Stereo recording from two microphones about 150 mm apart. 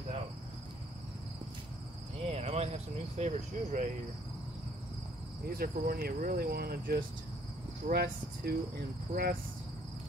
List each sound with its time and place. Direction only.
2.2 s cricket: 45° right (ahead or behind)
5.5 s speech: 80° right